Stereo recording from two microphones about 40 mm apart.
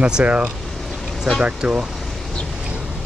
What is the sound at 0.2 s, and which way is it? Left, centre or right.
Speech, right.